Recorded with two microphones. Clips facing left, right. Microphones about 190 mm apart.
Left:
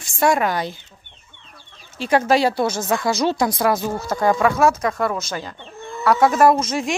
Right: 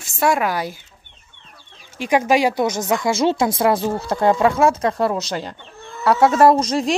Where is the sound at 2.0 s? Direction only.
15° right (ahead or behind); by 6.8 s 35° right (ahead or behind).